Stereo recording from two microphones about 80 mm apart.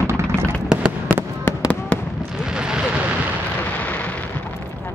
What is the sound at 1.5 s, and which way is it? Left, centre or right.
Fireworks, left.